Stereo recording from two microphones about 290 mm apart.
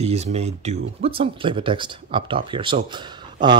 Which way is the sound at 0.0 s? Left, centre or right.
Right.